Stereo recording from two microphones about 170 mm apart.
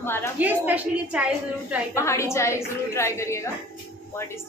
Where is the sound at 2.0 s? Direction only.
15° left (ahead or behind).